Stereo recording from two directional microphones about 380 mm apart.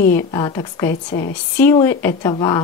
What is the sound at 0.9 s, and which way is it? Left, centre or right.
Speech, left.